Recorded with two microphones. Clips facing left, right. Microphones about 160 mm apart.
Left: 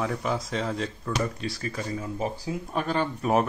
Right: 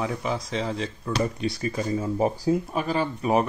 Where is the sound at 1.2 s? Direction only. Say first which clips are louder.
Right 4 dB; 20° right (ahead or behind).